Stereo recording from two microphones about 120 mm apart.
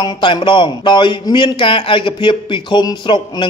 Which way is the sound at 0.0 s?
45° left (ahead or behind).